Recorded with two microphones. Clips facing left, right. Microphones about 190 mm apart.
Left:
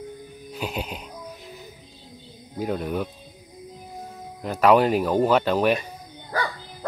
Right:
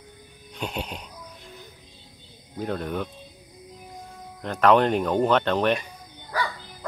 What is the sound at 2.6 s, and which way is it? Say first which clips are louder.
Speech: left 2 dB; 5° left (ahead or behind).